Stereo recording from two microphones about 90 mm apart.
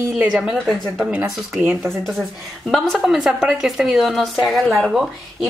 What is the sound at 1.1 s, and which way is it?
Speech, 20° right (ahead or behind).